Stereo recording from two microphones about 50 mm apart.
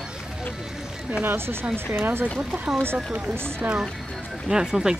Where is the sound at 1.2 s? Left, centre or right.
Right.